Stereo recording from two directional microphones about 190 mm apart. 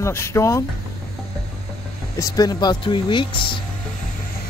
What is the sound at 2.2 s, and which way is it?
Speech, 20° left (ahead or behind).